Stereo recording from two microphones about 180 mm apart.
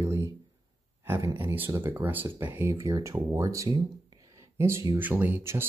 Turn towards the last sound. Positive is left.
turn(degrees=-15)  # may be behind; listen again after turning